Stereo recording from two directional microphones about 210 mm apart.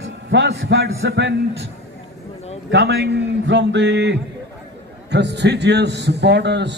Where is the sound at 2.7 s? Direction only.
55° right (ahead or behind).